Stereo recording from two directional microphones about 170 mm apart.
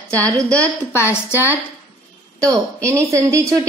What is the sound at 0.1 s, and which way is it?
Speech, 20° right (ahead or behind).